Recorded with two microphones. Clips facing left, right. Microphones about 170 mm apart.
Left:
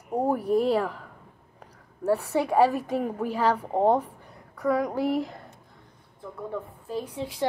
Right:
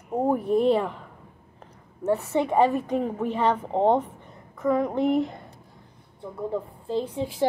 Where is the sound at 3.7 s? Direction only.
25° right (ahead or behind).